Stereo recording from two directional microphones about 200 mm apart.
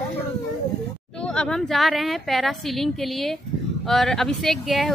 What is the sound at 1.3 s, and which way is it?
Speech, 5° left (ahead or behind).